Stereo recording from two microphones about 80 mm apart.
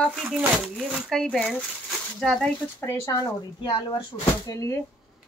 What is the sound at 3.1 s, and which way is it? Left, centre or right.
Speech, left.